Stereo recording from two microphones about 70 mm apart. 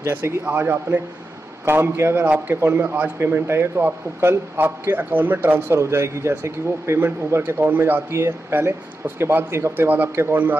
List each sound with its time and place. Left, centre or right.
0.0 s a man's voice: right
5.8 s speech: right
8.1 s speech: right